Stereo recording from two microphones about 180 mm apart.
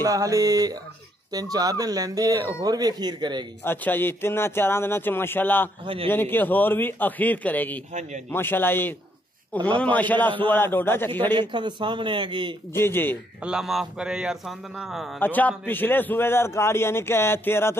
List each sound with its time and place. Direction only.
0.0 s speech: 20° right (ahead or behind)
3.6 s a man's voice: 10° left (ahead or behind)
7.9 s a man's voice: 40° right (ahead or behind)
8.3 s a man's voice: 10° left (ahead or behind)
11.3 s speech: 25° right (ahead or behind)
12.7 s a man's voice: 10° left (ahead or behind)
13.4 s a man's voice: 5° right (ahead or behind)
15.1 s a man's voice: 10° left (ahead or behind)